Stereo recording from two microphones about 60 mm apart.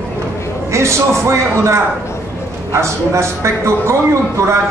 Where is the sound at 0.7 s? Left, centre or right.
Right.